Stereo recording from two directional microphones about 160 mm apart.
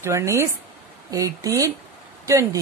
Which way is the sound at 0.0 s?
15° right (ahead or behind).